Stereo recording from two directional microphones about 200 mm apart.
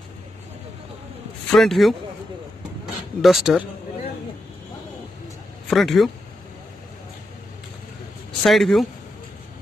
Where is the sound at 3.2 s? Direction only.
Centre (ahead or behind).